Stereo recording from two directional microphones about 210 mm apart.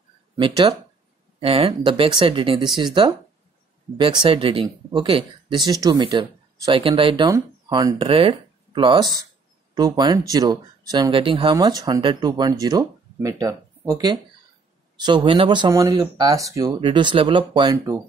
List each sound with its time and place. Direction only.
0.4 s speech: 25° right (ahead or behind)